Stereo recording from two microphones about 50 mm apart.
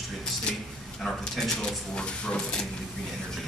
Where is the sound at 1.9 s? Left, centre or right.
Centre.